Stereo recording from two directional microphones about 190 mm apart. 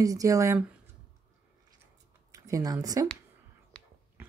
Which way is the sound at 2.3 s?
20° right (ahead or behind).